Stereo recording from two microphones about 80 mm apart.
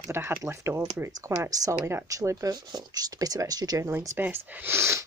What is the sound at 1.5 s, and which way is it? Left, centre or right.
Speech, right.